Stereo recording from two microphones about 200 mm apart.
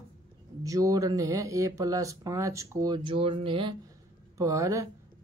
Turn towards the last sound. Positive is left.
turn(degrees=-15)  # may be behind; listen again after turning